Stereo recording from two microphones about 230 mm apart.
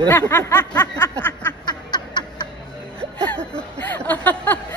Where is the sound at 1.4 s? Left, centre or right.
Centre.